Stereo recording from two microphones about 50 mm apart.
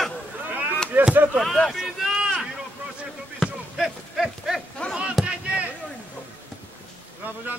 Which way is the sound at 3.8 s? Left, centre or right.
Centre.